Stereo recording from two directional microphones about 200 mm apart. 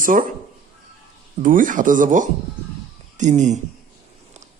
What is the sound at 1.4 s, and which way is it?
Speech, 40° right (ahead or behind).